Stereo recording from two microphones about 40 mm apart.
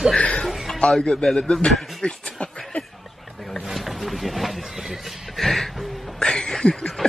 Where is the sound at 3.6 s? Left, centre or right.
Centre.